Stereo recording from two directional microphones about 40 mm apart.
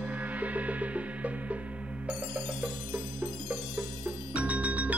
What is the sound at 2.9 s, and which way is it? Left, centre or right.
Music, right.